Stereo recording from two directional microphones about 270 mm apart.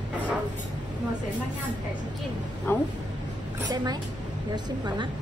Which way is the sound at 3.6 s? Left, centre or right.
Centre.